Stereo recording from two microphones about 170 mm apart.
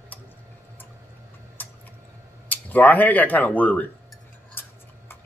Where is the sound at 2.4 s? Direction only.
10° left (ahead or behind).